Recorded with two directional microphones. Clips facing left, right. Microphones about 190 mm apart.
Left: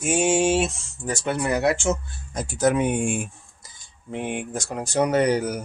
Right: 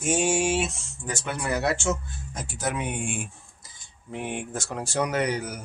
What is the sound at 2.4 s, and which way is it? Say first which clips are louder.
Speech: left 10 dB; 45° left (ahead or behind).